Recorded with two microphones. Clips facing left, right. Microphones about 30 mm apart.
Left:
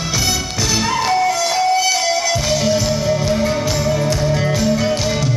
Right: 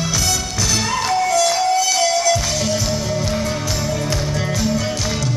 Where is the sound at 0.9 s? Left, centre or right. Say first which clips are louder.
Left 2 dB; centre.